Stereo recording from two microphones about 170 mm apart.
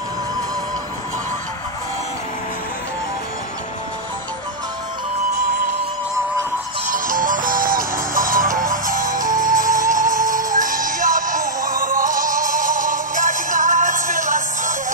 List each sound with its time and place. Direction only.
6.9 s music: 50° right (ahead or behind)